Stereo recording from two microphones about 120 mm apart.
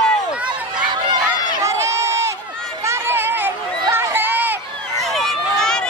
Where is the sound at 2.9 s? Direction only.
20° right (ahead or behind).